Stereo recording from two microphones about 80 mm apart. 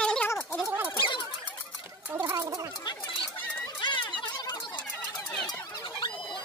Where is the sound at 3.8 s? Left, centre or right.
Left.